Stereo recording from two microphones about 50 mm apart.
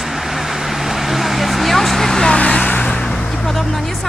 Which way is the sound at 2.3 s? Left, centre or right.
Left.